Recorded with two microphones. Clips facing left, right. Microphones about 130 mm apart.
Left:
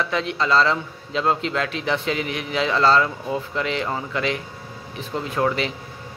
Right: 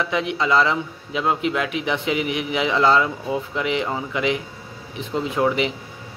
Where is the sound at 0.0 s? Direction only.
15° right (ahead or behind).